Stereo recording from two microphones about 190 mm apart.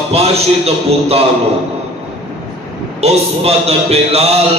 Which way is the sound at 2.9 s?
35° right (ahead or behind).